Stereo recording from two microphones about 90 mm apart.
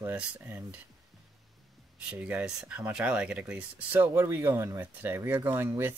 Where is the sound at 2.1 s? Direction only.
15° right (ahead or behind).